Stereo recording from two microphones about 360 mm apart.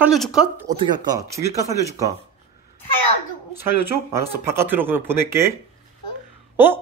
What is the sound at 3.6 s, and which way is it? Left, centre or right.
Speech, centre.